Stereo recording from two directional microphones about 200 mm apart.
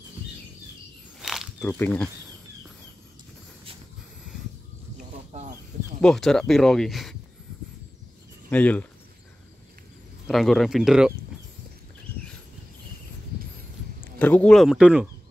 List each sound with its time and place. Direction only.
1.2 s wild animals: centre (ahead or behind)
1.7 s speech: 10° left (ahead or behind)
5.3 s a sound: 35° right (ahead or behind)
5.9 s speech: 5° left (ahead or behind)
8.5 s speech: 10° left (ahead or behind)
10.2 s speech: centre (ahead or behind)
14.0 s speech: 10° left (ahead or behind)